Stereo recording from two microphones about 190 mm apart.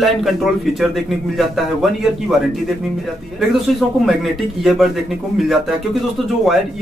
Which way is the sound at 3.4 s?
Centre (ahead or behind).